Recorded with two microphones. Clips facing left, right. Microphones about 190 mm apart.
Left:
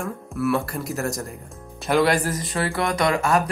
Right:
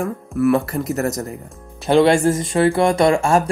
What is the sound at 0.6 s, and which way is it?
Speech, centre (ahead or behind).